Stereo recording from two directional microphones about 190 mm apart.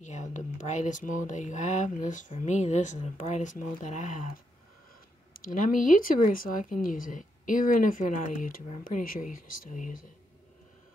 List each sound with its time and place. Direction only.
0.0 s speech: 40° left (ahead or behind)